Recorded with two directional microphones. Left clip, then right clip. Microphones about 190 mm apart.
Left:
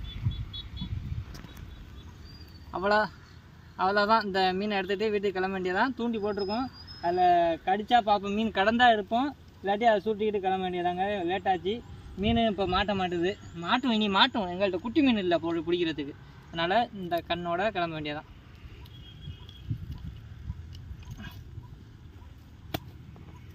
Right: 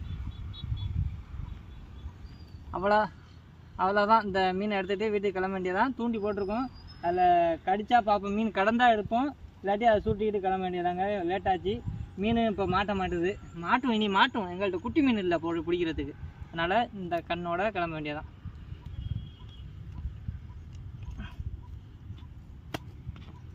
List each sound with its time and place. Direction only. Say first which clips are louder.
2.7 s speech: even; 5° right (ahead or behind)